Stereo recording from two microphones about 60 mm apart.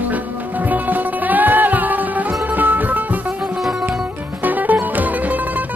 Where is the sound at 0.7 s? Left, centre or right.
Right.